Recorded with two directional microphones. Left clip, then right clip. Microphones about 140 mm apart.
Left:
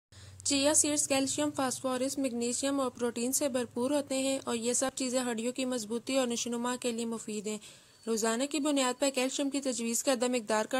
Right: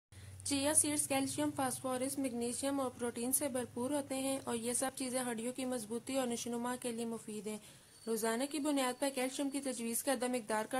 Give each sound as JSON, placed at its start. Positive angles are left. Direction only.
{"t": 0.5, "sound": "a woman's voice", "side_deg": 30}